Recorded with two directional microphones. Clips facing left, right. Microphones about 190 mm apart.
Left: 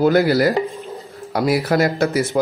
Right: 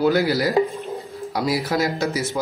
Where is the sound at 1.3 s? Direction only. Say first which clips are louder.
Left 5 dB; 55° left (ahead or behind).